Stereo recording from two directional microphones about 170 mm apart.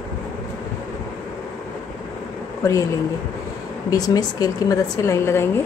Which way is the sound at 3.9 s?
20° left (ahead or behind).